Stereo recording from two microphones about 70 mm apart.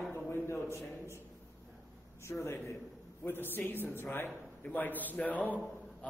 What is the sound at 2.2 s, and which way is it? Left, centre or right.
A man's voice, left.